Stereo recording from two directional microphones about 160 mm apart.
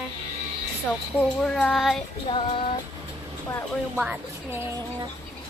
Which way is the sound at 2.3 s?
25° left (ahead or behind).